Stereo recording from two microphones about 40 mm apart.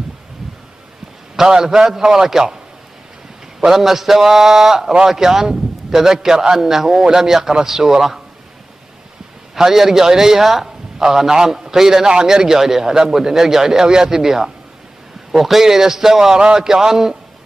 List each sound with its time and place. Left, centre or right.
1.3 s a man's voice: centre
3.6 s a man's voice: centre
9.6 s a man's voice: centre
16.3 s speech: right
16.6 s a man's voice: centre